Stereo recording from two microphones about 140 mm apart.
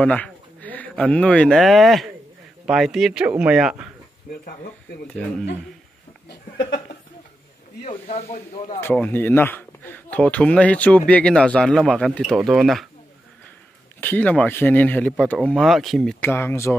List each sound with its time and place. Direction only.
0.0 s a man's voice: 10° left (ahead or behind); by 3.9 s 5° right (ahead or behind)
5.0 s speech: 5° left (ahead or behind)
7.8 s speech: 50° left (ahead or behind)
8.8 s a man's voice: 10° left (ahead or behind)
14.0 s speech: 10° left (ahead or behind)
16.2 s speech: 15° left (ahead or behind)